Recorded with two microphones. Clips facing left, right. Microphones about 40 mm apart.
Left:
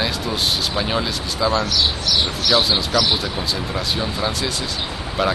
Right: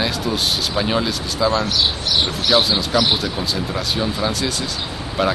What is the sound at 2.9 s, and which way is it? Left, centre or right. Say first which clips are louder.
Speech: right 3 dB; centre.